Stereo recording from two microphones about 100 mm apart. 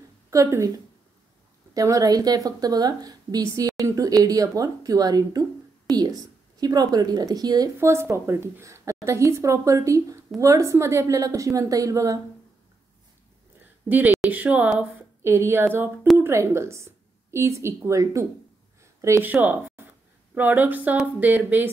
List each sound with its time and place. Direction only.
0.3 s a woman's voice: 35° right (ahead or behind)
7.7 s a woman's voice: 25° right (ahead or behind)
13.8 s a woman's voice: 20° right (ahead or behind)
19.2 s a woman's voice: 20° right (ahead or behind)